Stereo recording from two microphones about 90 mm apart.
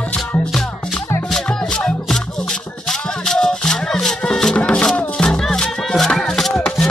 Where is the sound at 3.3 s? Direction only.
5° left (ahead or behind).